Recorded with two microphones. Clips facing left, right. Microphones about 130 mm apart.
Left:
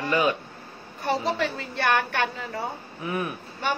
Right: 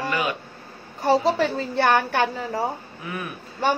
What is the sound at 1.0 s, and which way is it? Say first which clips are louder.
A woman's voice: right 6 dB; 30° right (ahead or behind).